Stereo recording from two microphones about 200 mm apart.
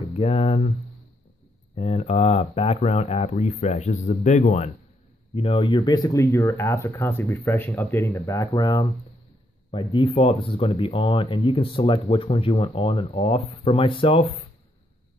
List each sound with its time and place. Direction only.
0.1 s speech: 30° left (ahead or behind)
1.8 s speech: 30° left (ahead or behind)